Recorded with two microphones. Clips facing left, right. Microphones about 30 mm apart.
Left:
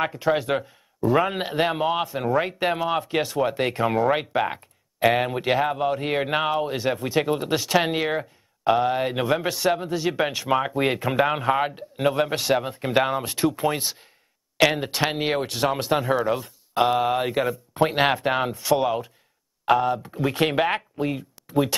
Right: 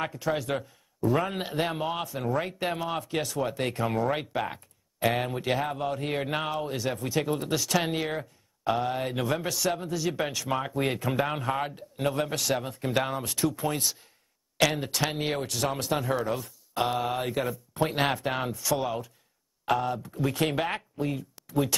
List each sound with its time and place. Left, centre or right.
0.0 s speech: left
1.0 s speech: centre
1.3 s speech: left
3.3 s speech: centre
7.2 s speech: centre
7.4 s speech: left
11.1 s speech: centre
13.2 s speech: left
16.9 s speech: centre